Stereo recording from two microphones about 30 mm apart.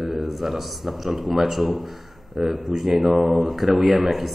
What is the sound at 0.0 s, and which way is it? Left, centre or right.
Speech, centre.